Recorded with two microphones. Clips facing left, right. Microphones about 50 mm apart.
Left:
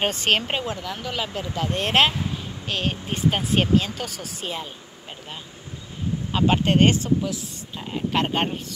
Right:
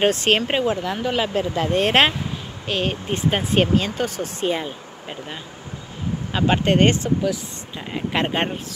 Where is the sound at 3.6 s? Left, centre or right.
Right.